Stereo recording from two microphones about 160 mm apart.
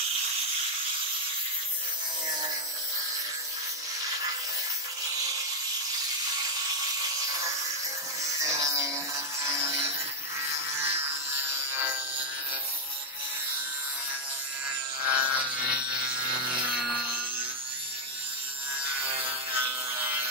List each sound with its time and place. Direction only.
8.2 s music: 20° right (ahead or behind)
10.5 s wood: 15° right (ahead or behind)
15.0 s wood: 10° right (ahead or behind)
19.2 s wood: 10° right (ahead or behind)